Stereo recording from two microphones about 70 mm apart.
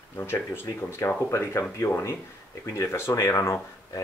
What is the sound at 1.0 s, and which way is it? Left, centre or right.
Speech, left.